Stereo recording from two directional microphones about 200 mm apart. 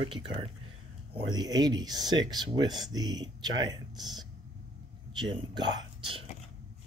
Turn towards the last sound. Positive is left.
turn(degrees=-25)  # may be behind; listen again after turning